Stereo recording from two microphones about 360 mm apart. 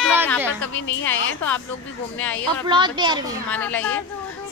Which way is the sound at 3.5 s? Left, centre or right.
Centre.